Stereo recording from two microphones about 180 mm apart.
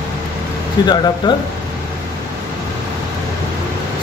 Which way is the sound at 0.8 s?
25° left (ahead or behind).